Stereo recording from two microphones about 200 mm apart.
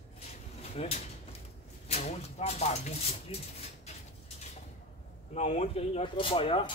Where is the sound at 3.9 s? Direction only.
35° left (ahead or behind).